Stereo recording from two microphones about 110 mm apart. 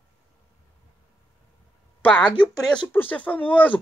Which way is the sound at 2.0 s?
15° left (ahead or behind).